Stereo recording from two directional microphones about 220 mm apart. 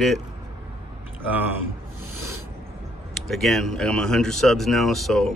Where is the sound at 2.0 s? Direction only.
85° left.